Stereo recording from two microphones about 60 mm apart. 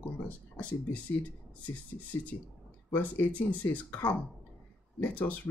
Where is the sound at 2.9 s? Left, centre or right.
Left.